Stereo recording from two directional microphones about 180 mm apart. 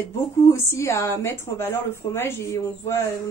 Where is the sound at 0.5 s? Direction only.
15° left (ahead or behind).